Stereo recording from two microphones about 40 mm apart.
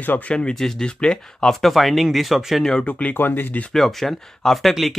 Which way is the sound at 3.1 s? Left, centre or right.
Left.